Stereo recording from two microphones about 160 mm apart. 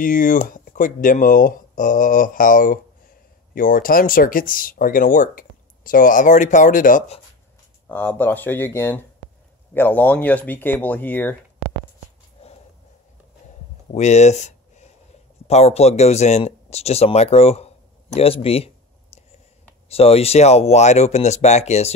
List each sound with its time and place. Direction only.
0.0 s speech: 60° left (ahead or behind)
7.9 s speech: 10° left (ahead or behind)
13.9 s a sound: 45° left (ahead or behind)
15.4 s speech: 40° left (ahead or behind)
19.1 s a sound: 40° left (ahead or behind)
19.9 s speech: 40° left (ahead or behind)